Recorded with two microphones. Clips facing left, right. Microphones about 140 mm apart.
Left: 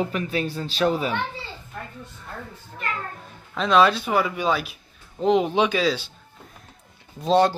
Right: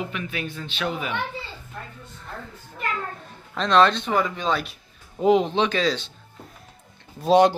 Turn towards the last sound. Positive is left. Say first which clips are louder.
# right 2 dB
turn(degrees=-15)  # may be behind; listen again after turning